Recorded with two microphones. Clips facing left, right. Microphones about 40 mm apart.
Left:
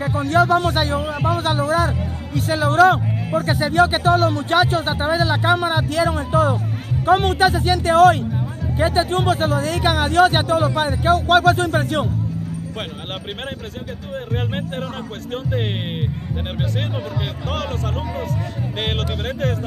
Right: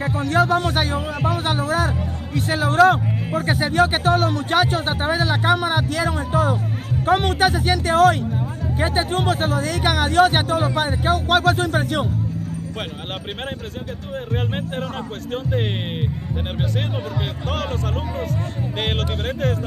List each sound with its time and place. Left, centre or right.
0.3 s speech: centre
2.7 s speech: centre
3.4 s speech: centre
3.7 s speech: centre
14.3 s speech: centre
18.3 s speech: centre